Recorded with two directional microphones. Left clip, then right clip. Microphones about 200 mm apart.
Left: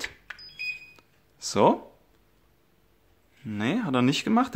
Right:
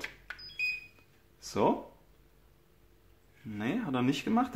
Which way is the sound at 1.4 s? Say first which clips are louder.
Left 8 dB; 45° left (ahead or behind).